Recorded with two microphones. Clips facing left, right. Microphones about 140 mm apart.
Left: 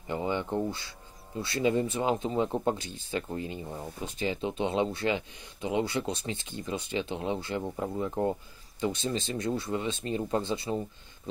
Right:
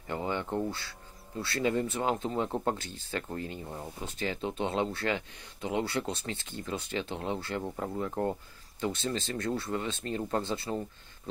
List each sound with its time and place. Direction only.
0.0 s a sound: 10° left (ahead or behind)
0.6 s speech: 20° left (ahead or behind); by 6.3 s 5° left (ahead or behind)
6.3 s speech: 15° left (ahead or behind)
7.6 s speech: centre (ahead or behind)